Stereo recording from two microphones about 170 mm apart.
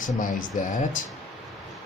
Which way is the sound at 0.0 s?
50° left (ahead or behind).